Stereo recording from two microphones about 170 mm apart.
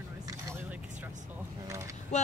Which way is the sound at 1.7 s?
20° right (ahead or behind).